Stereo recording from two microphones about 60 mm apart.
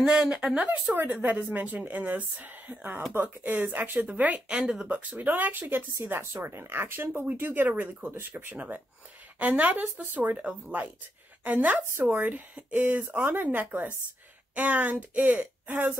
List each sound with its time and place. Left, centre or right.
0.0 s speech: centre
0.7 s speech: right
5.1 s speech: right